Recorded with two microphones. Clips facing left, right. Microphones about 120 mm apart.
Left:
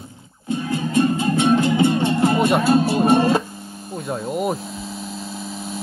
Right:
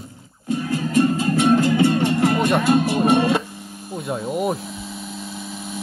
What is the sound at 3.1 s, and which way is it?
Music, 30° left (ahead or behind).